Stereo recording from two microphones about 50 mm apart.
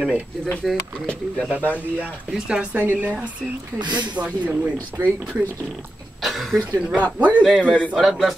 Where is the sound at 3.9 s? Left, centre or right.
Right.